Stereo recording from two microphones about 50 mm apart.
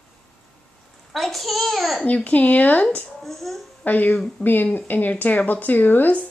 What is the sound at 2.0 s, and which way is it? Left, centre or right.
Speech, left.